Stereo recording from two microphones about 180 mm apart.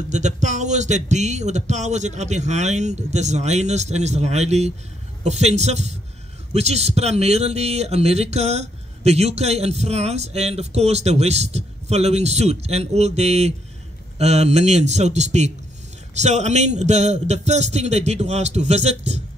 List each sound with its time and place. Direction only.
0.1 s a man's voice: 40° right (ahead or behind)